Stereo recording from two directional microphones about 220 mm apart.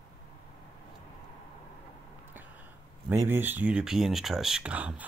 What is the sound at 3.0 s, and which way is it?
Speech, 10° right (ahead or behind).